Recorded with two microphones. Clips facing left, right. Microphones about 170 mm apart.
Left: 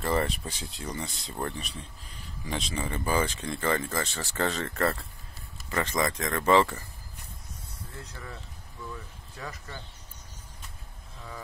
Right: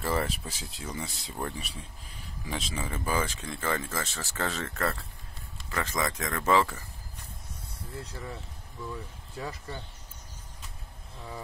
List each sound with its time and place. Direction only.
0.0 s speech: 5° right (ahead or behind)
8.0 s speech: 25° right (ahead or behind)
9.4 s speech: 25° right (ahead or behind)